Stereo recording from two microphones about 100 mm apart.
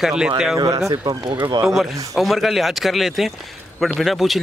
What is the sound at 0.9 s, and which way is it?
Speech, 50° right (ahead or behind).